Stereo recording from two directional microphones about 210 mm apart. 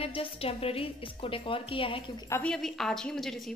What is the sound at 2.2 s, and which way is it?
A woman's voice, 10° left (ahead or behind).